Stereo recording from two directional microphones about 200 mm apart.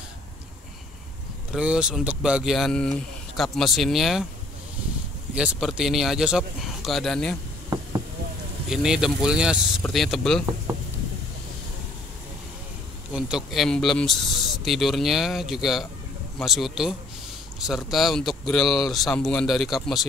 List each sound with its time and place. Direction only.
1.5 s speech: 5° right (ahead or behind)
5.3 s speech: 5° right (ahead or behind)
7.7 s a sound: 20° right (ahead or behind)
8.6 s speech: 5° right (ahead or behind)
13.1 s a man's voice: centre (ahead or behind)